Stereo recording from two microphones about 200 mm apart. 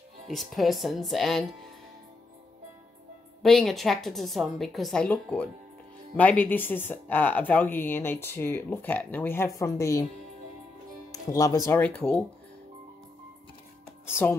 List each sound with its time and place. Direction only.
0.3 s a woman's voice: centre (ahead or behind)
3.4 s a woman's voice: centre (ahead or behind); by 10.0 s 15° left (ahead or behind)
11.1 s speech: 15° left (ahead or behind)
14.0 s speech: 10° left (ahead or behind)